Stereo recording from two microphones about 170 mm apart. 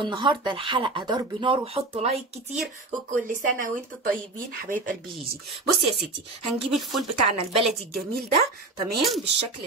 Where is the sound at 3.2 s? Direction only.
50° right (ahead or behind).